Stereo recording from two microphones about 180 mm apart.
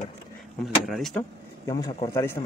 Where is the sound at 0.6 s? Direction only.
Centre (ahead or behind).